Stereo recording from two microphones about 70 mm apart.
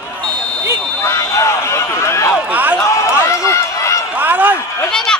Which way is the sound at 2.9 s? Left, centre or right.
Left.